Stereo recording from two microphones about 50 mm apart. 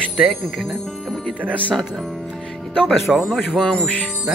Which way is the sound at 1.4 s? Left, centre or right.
Right.